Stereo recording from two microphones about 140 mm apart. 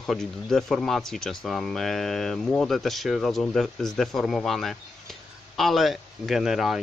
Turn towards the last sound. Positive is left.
turn(degrees=0)  # may be behind; listen again after turning